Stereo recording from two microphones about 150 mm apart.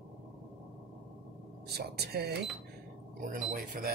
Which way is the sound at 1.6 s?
90° right.